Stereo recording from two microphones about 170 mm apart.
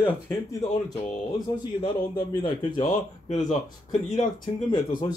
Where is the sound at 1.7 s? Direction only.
25° left (ahead or behind).